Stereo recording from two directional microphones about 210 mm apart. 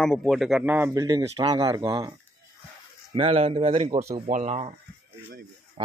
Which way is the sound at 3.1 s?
30° right (ahead or behind).